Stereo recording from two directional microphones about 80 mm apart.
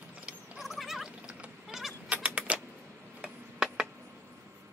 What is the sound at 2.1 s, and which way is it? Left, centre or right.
Typewriter, centre.